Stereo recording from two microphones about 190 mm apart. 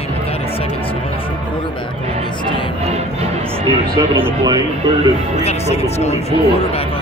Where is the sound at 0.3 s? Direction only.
30° left (ahead or behind).